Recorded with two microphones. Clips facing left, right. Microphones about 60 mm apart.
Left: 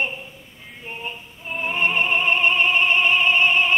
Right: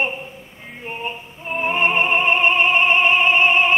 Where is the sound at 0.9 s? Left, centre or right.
Right.